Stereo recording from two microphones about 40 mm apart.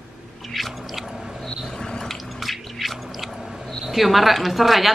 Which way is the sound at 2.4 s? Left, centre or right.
Centre.